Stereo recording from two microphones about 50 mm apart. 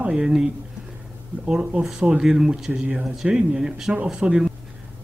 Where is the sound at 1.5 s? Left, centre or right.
Centre.